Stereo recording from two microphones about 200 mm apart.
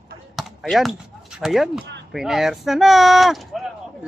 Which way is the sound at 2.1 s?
Centre (ahead or behind).